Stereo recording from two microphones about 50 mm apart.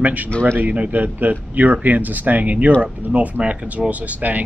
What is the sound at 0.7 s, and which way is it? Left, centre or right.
Speech, right.